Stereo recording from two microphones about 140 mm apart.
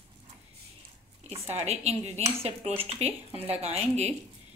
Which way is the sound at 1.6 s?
50° right (ahead or behind).